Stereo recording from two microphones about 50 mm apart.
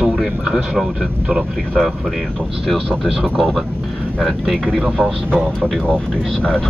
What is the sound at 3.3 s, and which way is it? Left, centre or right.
Speech, centre.